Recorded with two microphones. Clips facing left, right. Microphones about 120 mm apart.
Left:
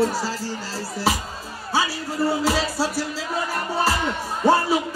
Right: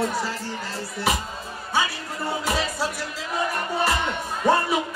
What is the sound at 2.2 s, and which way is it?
Speech, 30° left (ahead or behind).